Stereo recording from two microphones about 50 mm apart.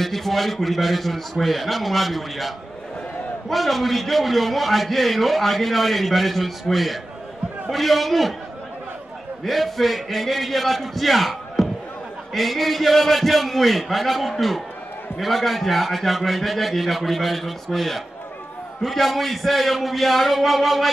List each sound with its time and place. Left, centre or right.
0.0 s a man's voice: centre
9.4 s a man's voice: centre